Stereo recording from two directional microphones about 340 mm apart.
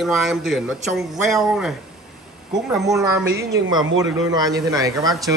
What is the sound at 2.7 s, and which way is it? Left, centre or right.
Speech, centre.